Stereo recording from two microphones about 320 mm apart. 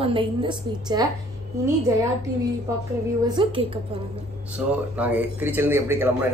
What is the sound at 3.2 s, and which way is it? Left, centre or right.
Speech, centre.